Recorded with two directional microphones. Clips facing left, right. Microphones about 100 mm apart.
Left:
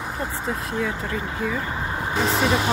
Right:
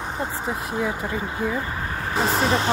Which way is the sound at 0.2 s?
15° right (ahead or behind).